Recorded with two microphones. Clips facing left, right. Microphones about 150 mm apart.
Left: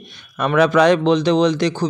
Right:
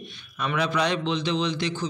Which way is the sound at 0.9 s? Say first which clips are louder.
Left 12 dB; 60° left (ahead or behind).